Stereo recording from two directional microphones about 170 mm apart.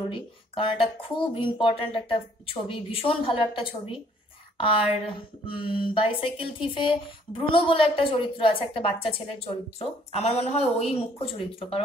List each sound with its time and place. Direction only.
0.1 s a woman's voice: 30° left (ahead or behind)
5.5 s a woman's voice: 30° left (ahead or behind)